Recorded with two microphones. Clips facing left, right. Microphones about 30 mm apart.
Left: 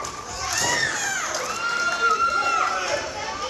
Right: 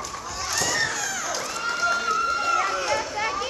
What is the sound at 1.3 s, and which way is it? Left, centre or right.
Run, centre.